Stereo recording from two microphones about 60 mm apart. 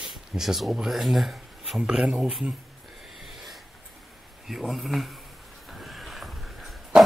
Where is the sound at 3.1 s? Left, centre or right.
Centre.